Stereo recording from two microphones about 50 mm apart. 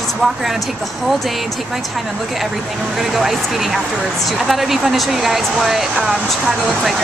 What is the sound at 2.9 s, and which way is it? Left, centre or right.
Speech, centre.